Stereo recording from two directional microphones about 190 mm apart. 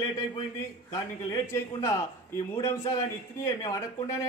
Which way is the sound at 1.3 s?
15° left (ahead or behind).